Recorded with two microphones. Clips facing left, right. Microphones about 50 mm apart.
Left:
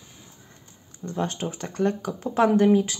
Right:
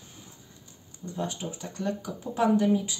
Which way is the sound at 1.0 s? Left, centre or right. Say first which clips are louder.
Left 5 dB; left.